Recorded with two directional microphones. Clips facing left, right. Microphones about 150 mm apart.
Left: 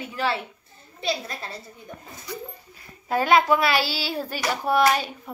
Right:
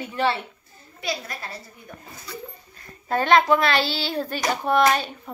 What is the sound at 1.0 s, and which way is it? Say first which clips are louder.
Speech: left 2 dB; 25° left (ahead or behind).